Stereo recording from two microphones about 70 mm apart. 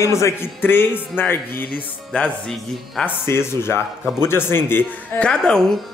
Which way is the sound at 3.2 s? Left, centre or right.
Left.